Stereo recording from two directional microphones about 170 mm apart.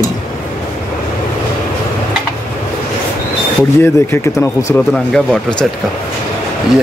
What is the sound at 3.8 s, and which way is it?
Speech, 15° left (ahead or behind).